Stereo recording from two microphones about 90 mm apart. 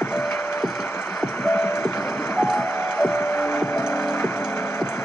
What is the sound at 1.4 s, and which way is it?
Music, 25° left (ahead or behind).